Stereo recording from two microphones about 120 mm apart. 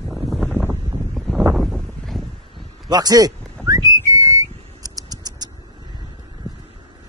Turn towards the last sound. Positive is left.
turn(degrees=-30)  # may be behind; listen again after turning